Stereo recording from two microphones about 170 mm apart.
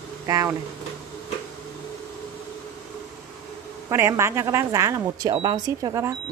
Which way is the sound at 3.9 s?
15° right (ahead or behind).